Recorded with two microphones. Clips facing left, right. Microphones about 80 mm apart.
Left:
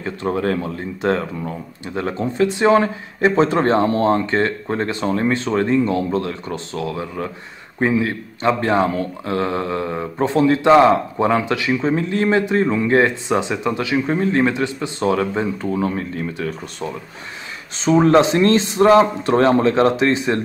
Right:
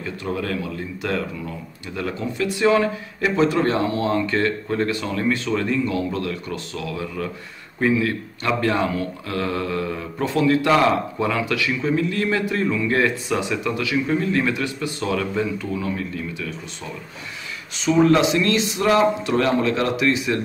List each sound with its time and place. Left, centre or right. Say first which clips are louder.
0.0 s speech: left 6 dB; left
17.7 s speech: left 3 dB; left